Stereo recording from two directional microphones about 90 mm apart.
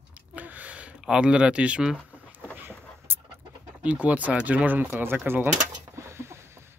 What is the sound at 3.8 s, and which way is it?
Speech, 15° right (ahead or behind).